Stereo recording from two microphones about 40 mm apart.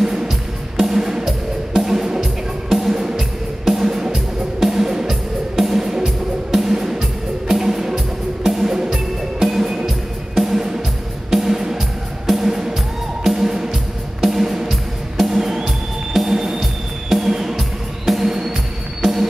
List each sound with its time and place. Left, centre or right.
0.0 s music: centre